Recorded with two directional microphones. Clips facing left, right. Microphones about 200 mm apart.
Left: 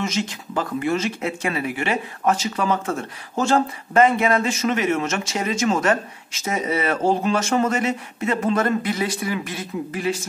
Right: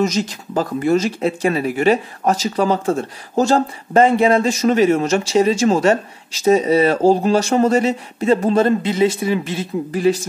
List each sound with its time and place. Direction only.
0.0 s speech: 40° right (ahead or behind)